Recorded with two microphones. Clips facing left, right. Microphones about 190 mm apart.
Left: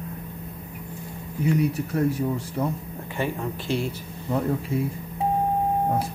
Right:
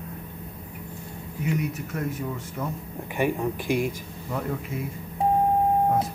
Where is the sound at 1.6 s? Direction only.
35° left (ahead or behind).